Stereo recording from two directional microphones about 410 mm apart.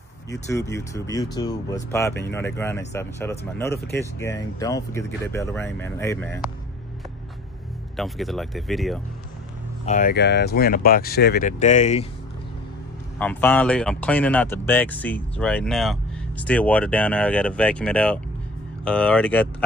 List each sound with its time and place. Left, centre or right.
0.3 s speech: centre
7.9 s speech: centre
9.8 s speech: centre
13.2 s speech: centre